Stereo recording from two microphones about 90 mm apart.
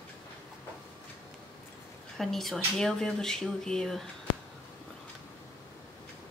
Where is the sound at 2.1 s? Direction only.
5° left (ahead or behind).